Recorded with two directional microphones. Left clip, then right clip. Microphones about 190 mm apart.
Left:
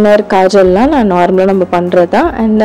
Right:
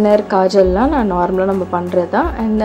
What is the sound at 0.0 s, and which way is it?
Speech, 30° left (ahead or behind).